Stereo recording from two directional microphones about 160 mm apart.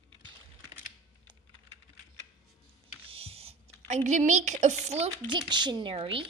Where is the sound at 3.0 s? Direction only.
35° right (ahead or behind).